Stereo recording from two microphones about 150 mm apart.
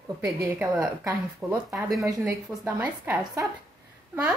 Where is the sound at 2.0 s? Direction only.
20° right (ahead or behind).